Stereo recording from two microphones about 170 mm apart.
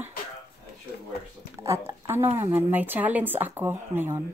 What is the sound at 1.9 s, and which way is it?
Speech, 15° right (ahead or behind).